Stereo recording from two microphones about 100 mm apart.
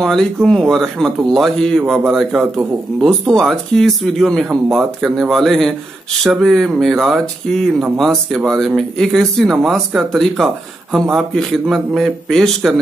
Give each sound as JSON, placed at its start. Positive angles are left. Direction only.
{"t": 0.0, "sound": "speech", "side_deg": 5}